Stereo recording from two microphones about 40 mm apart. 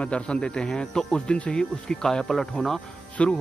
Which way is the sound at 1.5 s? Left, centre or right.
Centre.